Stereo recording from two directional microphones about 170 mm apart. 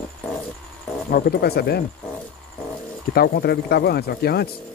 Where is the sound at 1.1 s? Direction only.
65° left (ahead or behind).